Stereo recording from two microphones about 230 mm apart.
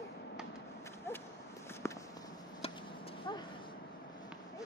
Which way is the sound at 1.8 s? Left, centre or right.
Centre.